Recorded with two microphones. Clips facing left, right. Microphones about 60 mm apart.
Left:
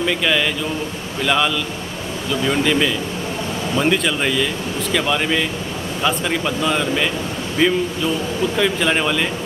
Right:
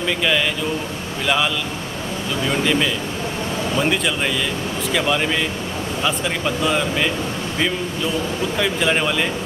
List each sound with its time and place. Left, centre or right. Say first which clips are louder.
0.0 s speech: left 1 dB; centre
2.6 s speech: left 2 dB; centre